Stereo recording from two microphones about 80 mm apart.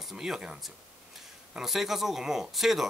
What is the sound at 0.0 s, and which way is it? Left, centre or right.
Speech, centre.